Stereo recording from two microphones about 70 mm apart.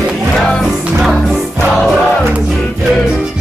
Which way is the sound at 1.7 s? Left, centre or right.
Centre.